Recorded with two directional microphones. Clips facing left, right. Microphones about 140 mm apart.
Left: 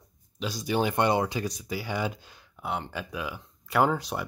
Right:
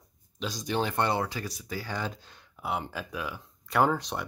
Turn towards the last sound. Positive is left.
turn(degrees=0)  # may be behind; listen again after turning